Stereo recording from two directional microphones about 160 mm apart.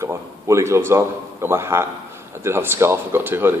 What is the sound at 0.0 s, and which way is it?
A man's voice, 15° right (ahead or behind).